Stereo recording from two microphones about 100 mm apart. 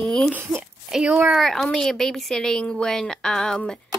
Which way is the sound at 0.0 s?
5° left (ahead or behind).